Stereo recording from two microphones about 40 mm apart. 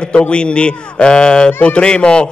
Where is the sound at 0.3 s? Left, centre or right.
Left.